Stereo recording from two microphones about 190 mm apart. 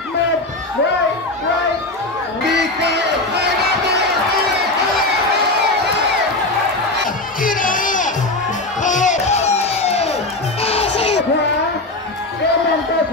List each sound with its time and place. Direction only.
7.4 s crowd: 45° left (ahead or behind)
10.6 s music: 30° left (ahead or behind)